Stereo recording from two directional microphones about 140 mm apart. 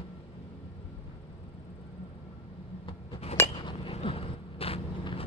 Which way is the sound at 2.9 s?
40° left (ahead or behind).